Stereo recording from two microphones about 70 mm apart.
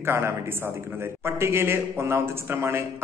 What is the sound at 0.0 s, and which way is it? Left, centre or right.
A man's voice, right.